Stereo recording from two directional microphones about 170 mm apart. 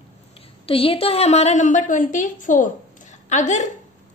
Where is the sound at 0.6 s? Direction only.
35° left (ahead or behind).